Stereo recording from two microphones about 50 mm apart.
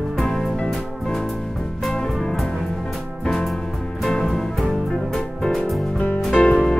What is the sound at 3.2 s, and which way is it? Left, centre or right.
Music, centre.